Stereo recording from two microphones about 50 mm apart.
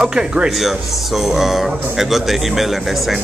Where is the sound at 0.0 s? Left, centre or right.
Centre.